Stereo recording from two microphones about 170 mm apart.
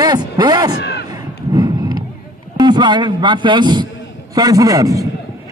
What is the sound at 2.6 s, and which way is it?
Speech, 25° right (ahead or behind).